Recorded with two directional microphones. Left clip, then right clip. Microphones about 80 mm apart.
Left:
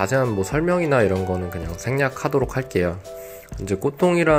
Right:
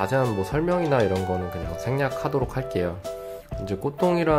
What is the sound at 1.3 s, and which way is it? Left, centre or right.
Speech, centre.